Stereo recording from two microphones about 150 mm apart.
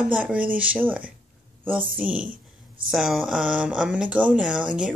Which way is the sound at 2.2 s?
65° right (ahead or behind).